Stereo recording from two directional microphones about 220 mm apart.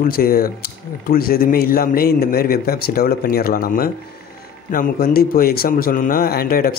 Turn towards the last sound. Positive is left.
turn(degrees=45)  # may be behind; listen again after turning